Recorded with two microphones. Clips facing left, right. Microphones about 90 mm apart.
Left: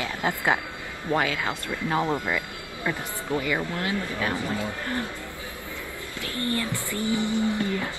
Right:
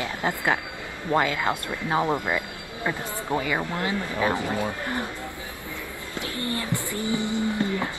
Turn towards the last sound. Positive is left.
turn(degrees=-20)  # may be behind; listen again after turning